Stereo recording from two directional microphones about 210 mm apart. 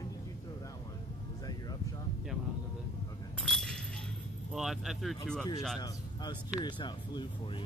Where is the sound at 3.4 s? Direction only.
Centre (ahead or behind).